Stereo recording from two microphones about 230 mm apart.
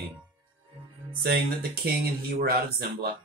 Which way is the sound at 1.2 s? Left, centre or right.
Right.